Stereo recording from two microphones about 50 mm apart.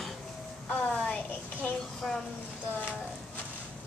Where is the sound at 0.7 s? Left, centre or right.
Left.